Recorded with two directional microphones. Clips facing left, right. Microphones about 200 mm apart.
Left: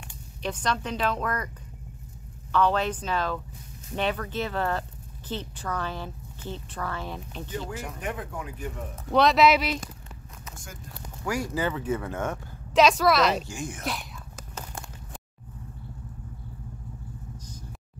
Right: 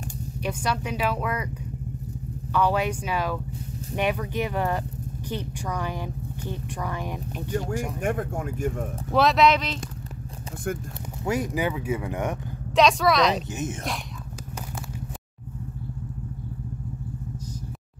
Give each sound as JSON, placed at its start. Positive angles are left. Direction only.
{"t": 0.4, "sound": "speech", "side_deg": -10}
{"t": 2.5, "sound": "speech", "side_deg": -10}
{"t": 8.0, "sound": "speech", "side_deg": -50}
{"t": 9.1, "sound": "speech", "side_deg": 0}
{"t": 11.2, "sound": "speech", "side_deg": -20}
{"t": 12.7, "sound": "speech", "side_deg": 0}
{"t": 13.5, "sound": "speech", "side_deg": -20}